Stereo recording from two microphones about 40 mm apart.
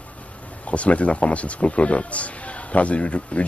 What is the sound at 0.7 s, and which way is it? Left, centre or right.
Speech, left.